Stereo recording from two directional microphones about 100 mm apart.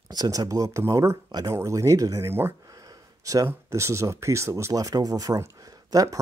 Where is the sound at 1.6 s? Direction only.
30° right (ahead or behind).